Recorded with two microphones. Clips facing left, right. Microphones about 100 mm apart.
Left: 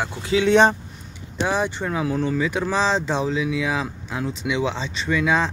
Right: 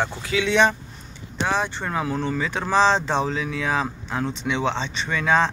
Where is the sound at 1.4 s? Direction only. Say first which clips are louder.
Left 1 dB; 10° left (ahead or behind).